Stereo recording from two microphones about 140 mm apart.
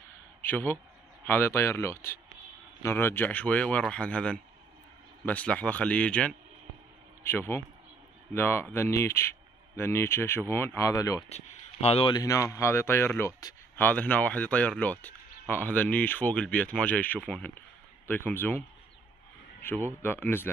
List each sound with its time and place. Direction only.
0.4 s speech: 15° left (ahead or behind)
11.2 s speech: 50° left (ahead or behind)
12.1 s speech: 25° left (ahead or behind)
19.6 s speech: 15° left (ahead or behind)